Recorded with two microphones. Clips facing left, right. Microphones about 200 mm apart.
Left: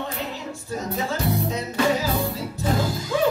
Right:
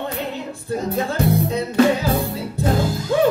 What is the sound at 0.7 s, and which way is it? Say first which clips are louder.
Music: right 5 dB; 55° right (ahead or behind).